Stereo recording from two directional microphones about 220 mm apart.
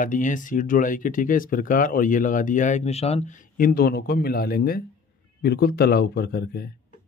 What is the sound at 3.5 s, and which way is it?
Speech, 40° left (ahead or behind).